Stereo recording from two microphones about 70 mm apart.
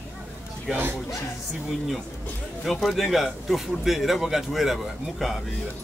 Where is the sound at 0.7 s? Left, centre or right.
Right.